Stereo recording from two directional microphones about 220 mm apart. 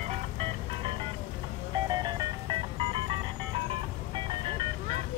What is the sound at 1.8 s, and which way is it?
Music, 20° right (ahead or behind).